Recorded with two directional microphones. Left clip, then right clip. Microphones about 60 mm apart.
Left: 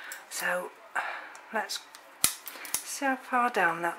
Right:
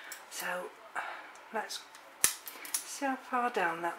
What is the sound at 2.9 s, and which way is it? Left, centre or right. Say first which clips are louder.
Speech: left 6 dB; left.